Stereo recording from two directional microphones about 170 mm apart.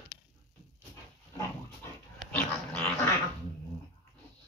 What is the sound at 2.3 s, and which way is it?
Dog, 10° left (ahead or behind).